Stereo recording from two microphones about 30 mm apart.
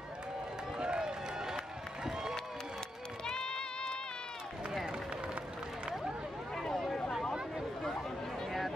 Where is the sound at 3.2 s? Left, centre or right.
Left.